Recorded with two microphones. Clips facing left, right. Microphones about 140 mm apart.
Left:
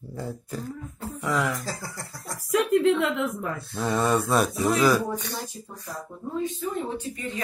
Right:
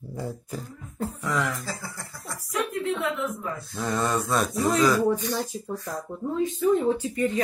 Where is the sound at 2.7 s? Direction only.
90° left.